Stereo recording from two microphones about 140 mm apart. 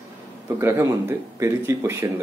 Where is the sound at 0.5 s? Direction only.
15° right (ahead or behind).